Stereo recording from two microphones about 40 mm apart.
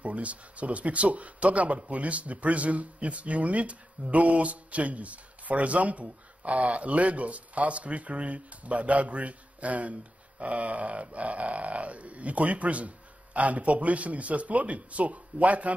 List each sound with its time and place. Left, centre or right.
0.0 s speech: right